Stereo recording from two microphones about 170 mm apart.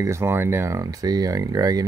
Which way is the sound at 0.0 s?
15° right (ahead or behind).